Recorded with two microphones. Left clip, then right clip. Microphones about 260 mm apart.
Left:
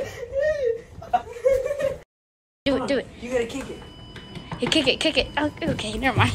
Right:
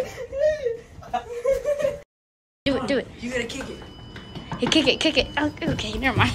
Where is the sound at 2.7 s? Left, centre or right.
Centre.